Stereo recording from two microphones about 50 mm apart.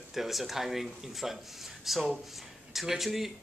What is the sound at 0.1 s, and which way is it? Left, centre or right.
Speech, centre.